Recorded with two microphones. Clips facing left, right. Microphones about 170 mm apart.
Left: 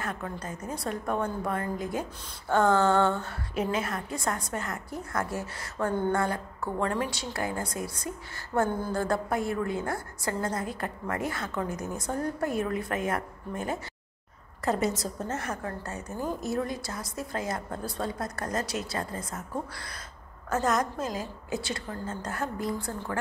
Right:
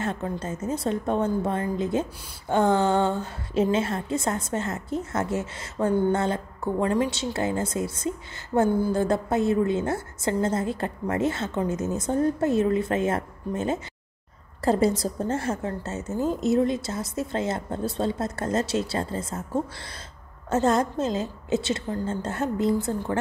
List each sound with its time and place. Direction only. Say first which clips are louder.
0.0 s a woman's voice: right 6 dB; 25° right (ahead or behind)
8.5 s a sound: right 6 dB; 10° right (ahead or behind)
8.9 s a woman's voice: right 5 dB; 20° right (ahead or behind)